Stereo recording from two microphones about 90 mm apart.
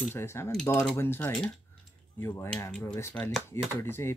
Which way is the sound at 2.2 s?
30° left (ahead or behind).